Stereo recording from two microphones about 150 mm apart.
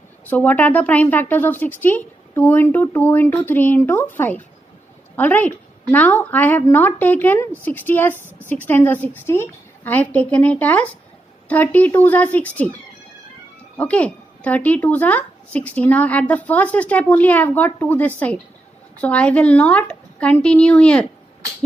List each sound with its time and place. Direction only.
0.2 s speech: 10° left (ahead or behind)
13.7 s speech: 10° left (ahead or behind)